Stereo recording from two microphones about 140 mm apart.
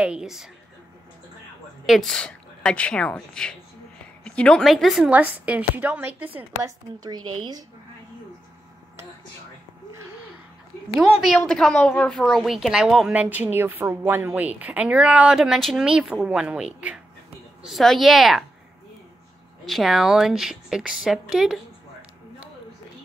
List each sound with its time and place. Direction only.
0.0 s speech: 5° right (ahead or behind)
1.9 s a woman's voice: centre (ahead or behind)
5.1 s a woman's voice: 10° right (ahead or behind)
6.6 s a woman's voice: 30° right (ahead or behind)
11.1 s speech: centre (ahead or behind)
19.6 s speech: centre (ahead or behind)